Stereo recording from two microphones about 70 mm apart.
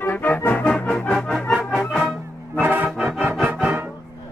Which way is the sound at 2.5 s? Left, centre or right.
Right.